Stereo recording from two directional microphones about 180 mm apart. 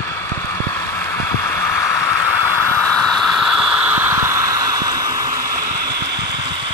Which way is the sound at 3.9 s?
15° right (ahead or behind).